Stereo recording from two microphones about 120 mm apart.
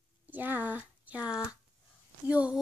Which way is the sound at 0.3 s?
15° right (ahead or behind).